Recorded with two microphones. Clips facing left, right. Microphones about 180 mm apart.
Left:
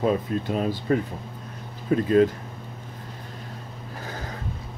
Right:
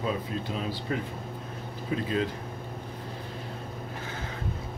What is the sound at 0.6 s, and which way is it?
Speech, 45° left (ahead or behind).